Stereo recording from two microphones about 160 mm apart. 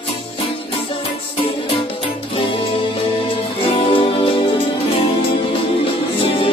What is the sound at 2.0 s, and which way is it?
Music, 35° left (ahead or behind).